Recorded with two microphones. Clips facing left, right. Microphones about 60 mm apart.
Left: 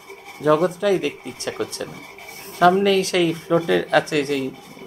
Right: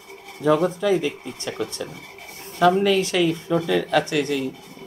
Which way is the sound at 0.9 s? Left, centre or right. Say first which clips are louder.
Left 1 dB; left.